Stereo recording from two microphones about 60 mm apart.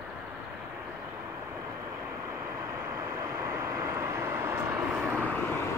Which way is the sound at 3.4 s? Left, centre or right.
Right.